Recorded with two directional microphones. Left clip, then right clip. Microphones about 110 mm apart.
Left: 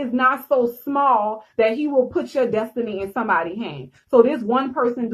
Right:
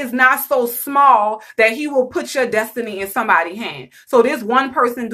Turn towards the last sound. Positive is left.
turn(degrees=-25)  # may be behind; listen again after turning